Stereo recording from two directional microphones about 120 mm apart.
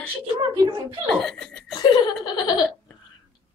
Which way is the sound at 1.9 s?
40° left (ahead or behind).